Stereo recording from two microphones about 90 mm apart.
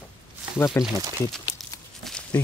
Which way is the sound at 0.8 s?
25° left (ahead or behind).